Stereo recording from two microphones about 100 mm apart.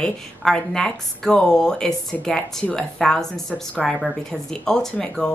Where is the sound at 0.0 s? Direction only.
5° left (ahead or behind).